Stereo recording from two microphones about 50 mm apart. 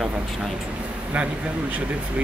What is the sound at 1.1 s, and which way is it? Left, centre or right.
Speech, right.